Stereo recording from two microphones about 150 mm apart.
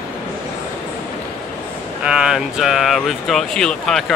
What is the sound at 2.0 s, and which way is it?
Speech, 5° right (ahead or behind).